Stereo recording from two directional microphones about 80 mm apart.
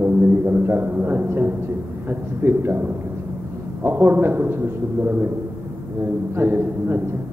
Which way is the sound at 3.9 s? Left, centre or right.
Right.